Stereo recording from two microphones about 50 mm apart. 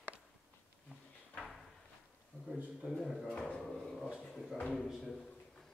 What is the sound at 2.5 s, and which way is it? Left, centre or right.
Speech, centre.